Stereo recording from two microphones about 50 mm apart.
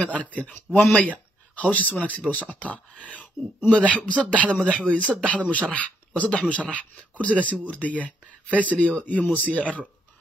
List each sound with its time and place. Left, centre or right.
0.0 s a man's voice: left